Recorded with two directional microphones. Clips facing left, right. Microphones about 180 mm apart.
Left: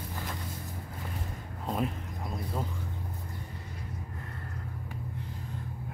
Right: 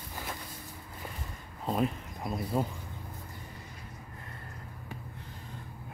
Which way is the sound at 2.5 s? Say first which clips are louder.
Right 6 dB; 15° right (ahead or behind).